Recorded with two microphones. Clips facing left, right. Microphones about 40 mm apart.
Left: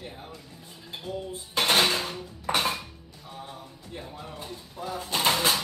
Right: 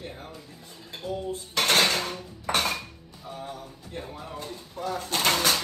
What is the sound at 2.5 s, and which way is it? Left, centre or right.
Dishes, right.